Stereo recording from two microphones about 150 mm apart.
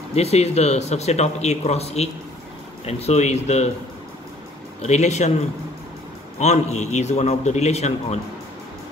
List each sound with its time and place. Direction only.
0.1 s speech: 45° left (ahead or behind)
4.8 s speech: 50° left (ahead or behind)
6.4 s speech: 50° left (ahead or behind)